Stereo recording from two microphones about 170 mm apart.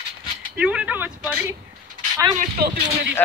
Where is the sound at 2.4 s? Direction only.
60° right (ahead or behind).